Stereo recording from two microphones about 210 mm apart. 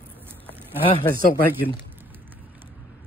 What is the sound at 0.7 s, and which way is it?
Speech, 25° left (ahead or behind).